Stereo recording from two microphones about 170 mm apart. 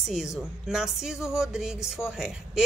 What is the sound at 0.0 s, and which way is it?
Speech, centre (ahead or behind).